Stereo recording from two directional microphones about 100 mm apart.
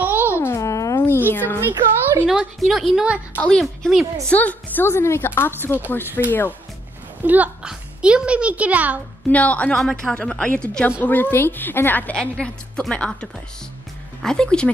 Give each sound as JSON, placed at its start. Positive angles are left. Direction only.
{"t": 0.0, "sound": "music", "side_deg": -20}
{"t": 0.4, "sound": "a sound", "side_deg": 30}
{"t": 1.3, "sound": "a woman's voice", "side_deg": 20}
{"t": 1.6, "sound": "a woman's voice", "side_deg": -20}
{"t": 2.2, "sound": "a woman's voice", "side_deg": -5}
{"t": 4.3, "sound": "a woman's voice", "side_deg": 15}
{"t": 7.2, "sound": "a child's voice", "side_deg": -15}
{"t": 9.3, "sound": "a woman's voice", "side_deg": 15}